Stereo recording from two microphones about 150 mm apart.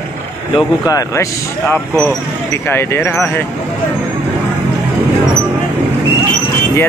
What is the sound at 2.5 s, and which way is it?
Speech, 15° left (ahead or behind).